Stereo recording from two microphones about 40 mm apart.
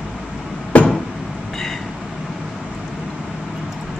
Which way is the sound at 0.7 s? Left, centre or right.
Left.